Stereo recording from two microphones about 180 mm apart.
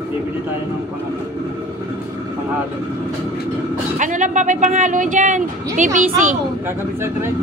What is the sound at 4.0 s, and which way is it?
Speech, 45° right (ahead or behind).